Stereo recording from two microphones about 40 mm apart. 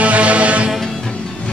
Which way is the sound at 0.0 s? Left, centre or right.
Right.